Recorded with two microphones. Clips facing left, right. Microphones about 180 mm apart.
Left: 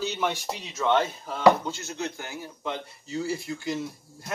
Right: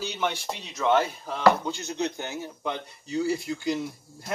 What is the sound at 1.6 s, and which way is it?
A man's voice, 20° right (ahead or behind).